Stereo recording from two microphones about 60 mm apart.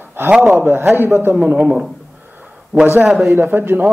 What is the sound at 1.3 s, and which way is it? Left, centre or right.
Speech, right.